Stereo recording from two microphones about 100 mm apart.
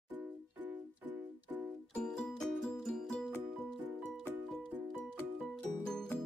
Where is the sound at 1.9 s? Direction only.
5° left (ahead or behind).